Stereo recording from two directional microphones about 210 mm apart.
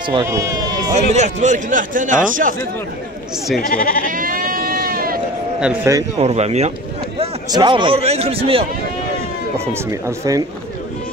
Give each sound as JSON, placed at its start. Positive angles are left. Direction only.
{"t": 0.1, "sound": "speech", "side_deg": -15}
{"t": 0.9, "sound": "a man's voice", "side_deg": -35}
{"t": 3.6, "sound": "goat", "side_deg": 45}
{"t": 4.0, "sound": "sheep", "side_deg": -40}
{"t": 5.6, "sound": "speech", "side_deg": -5}
{"t": 5.9, "sound": "a man's voice", "side_deg": -30}
{"t": 9.8, "sound": "speech", "side_deg": -15}